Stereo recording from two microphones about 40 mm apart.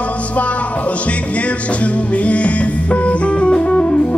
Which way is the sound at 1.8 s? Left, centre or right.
Left.